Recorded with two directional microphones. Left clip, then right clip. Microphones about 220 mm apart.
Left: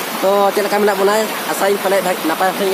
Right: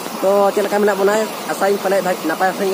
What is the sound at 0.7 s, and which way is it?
Speech, 15° left (ahead or behind).